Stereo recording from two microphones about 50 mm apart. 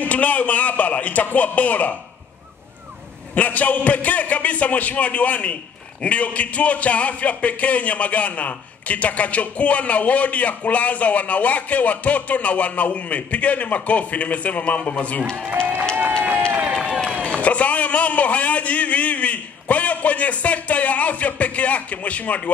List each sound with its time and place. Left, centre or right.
0.0 s a man's voice: left
3.3 s a man's voice: left
17.1 s speech: left